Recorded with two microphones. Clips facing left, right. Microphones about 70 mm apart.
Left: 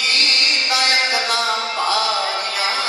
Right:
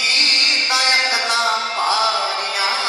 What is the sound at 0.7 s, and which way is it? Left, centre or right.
Music, right.